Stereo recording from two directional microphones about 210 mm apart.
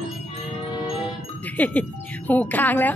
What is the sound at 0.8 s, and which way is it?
Ding, centre (ahead or behind).